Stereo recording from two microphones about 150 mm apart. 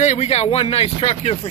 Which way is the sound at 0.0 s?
50° left (ahead or behind).